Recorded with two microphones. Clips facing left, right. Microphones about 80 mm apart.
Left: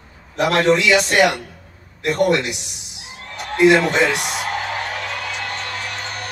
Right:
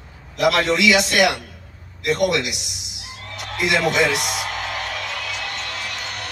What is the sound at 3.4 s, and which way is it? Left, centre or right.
Music, left.